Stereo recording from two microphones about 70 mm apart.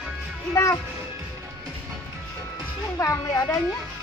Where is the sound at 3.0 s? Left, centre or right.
Left.